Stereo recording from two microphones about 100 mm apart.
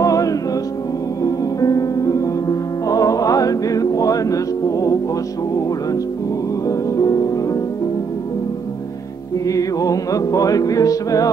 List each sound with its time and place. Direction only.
0.0 s music: 35° left (ahead or behind)
7.0 s music: 35° left (ahead or behind)
9.5 s music: 35° left (ahead or behind)